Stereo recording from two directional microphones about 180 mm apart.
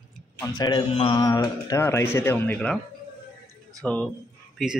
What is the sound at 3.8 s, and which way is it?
Speech, 5° left (ahead or behind).